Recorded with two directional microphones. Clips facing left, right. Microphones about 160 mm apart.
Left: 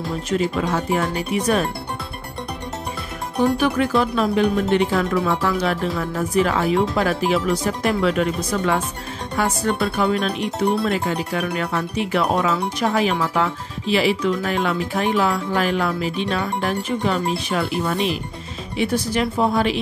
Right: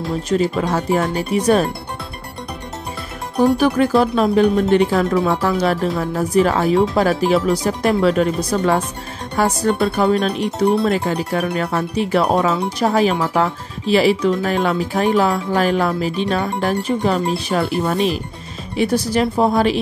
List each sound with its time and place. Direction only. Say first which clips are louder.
0.3 s speech: right 3 dB; 35° right (ahead or behind)
3.3 s speech: right 4 dB; 40° right (ahead or behind)